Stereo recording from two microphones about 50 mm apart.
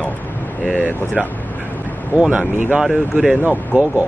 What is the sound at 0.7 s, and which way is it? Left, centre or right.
Speech, left.